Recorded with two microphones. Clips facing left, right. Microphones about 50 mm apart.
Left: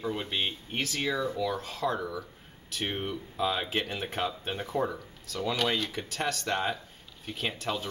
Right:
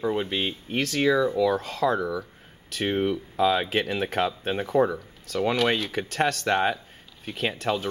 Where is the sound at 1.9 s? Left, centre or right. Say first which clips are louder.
Right 7 dB; right.